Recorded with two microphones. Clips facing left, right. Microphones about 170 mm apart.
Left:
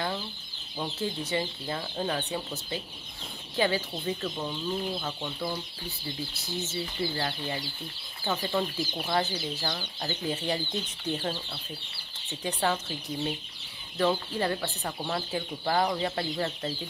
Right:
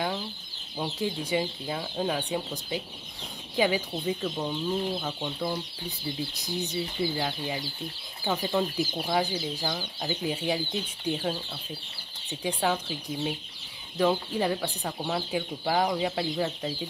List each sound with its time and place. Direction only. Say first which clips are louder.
0.7 s speech: right 2 dB; 15° right (ahead or behind)